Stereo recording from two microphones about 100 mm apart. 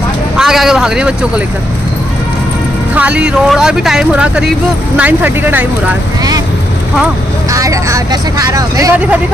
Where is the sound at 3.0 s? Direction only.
15° right (ahead or behind).